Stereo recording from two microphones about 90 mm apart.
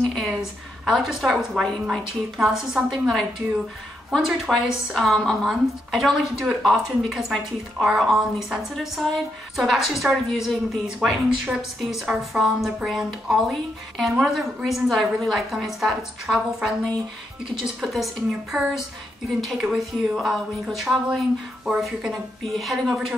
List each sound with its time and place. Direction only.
0.3 s a woman's voice: 5° right (ahead or behind)
17.8 s a woman's voice: centre (ahead or behind)